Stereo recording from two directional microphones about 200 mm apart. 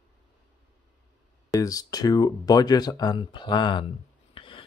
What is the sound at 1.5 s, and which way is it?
Speech, 15° left (ahead or behind).